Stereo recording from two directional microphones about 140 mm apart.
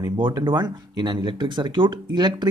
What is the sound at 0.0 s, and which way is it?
Speech, 30° right (ahead or behind).